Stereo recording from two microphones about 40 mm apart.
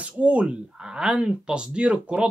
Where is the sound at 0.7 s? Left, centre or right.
Centre.